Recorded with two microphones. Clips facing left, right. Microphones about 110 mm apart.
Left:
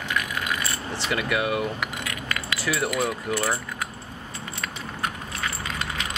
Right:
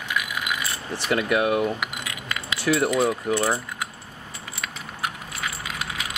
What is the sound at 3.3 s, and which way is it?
Speech, 15° right (ahead or behind).